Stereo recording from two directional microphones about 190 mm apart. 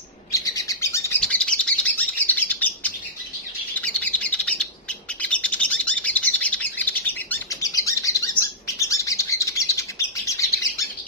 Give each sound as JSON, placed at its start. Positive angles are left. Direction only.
{"t": 0.3, "sound": "chirp", "side_deg": 15}
{"t": 1.2, "sound": "bird", "side_deg": 5}
{"t": 3.8, "sound": "chirp", "side_deg": 5}
{"t": 5.2, "sound": "bird", "side_deg": 5}